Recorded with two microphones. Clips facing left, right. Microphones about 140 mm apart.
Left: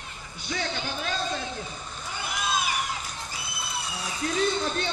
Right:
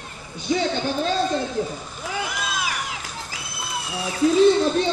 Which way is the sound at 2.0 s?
90° right.